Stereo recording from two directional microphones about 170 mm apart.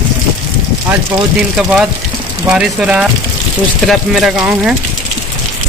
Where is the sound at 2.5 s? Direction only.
5° right (ahead or behind).